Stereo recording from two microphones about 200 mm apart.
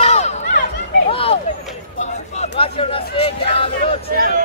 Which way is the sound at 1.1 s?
25° left (ahead or behind).